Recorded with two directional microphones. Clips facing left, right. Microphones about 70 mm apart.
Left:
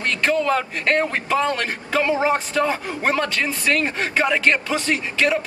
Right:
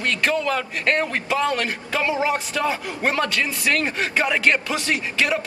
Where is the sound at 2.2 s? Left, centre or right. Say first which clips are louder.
Left 3 dB; left.